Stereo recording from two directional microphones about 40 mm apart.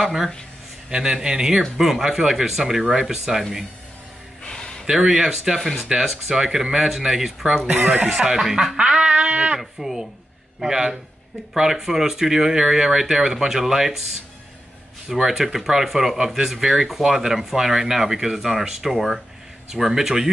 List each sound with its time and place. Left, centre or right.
0.0 s speech: centre
1.6 s speech: centre
4.4 s gasp: centre
4.8 s speech: centre
5.6 s speech: centre
6.0 s speech: centre
7.6 s speech: right
8.1 s a sound: centre
9.6 s speech: centre
15.0 s speech: centre